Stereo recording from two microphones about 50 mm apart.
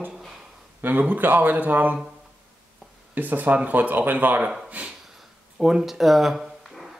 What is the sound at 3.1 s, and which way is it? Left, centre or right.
Speech, right.